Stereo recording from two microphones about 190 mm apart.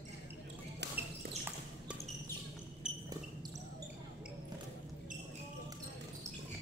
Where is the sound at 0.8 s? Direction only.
65° right (ahead or behind).